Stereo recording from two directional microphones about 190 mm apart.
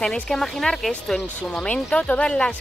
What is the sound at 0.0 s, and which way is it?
Speech, centre (ahead or behind).